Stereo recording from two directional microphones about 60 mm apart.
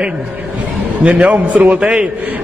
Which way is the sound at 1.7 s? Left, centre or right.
Centre.